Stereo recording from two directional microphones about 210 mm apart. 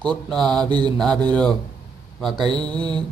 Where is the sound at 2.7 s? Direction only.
20° right (ahead or behind).